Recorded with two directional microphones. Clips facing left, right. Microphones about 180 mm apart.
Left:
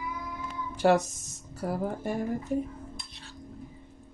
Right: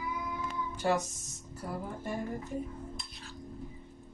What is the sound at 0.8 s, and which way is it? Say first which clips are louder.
Speech: left 7 dB; 80° left.